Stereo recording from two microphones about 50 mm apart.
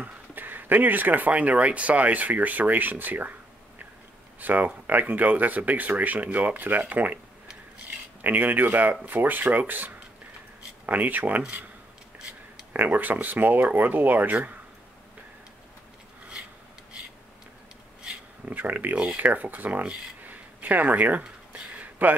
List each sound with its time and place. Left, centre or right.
0.0 s speech: right
4.4 s speech: right
8.2 s speech: right
12.7 s speech: right
18.0 s a sound: right
18.6 s speech: right
21.7 s a sound: right